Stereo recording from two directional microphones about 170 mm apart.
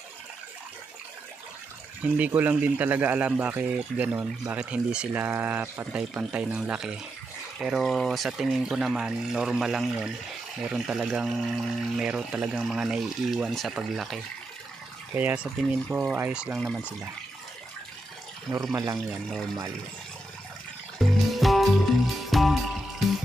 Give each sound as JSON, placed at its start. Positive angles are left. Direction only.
{"t": 2.1, "sound": "speech", "side_deg": -10}
{"t": 18.5, "sound": "speech", "side_deg": -20}
{"t": 18.9, "sound": "speech", "side_deg": 0}
{"t": 21.0, "sound": "music", "side_deg": 0}